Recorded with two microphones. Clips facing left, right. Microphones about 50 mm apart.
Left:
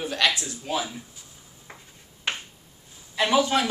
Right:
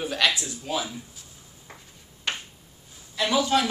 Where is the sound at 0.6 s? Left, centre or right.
Centre.